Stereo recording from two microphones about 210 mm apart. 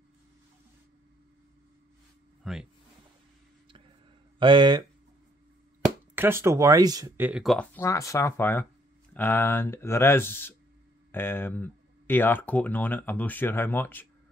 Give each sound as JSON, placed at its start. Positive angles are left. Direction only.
{"t": 2.4, "sound": "speech", "side_deg": 0}
{"t": 4.4, "sound": "speech", "side_deg": -20}
{"t": 6.1, "sound": "speech", "side_deg": -10}